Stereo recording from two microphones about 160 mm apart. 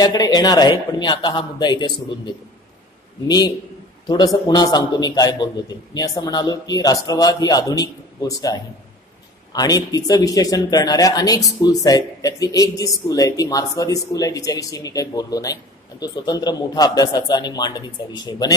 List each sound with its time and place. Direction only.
0.0 s speech: 25° left (ahead or behind)
3.3 s speech: 25° left (ahead or behind)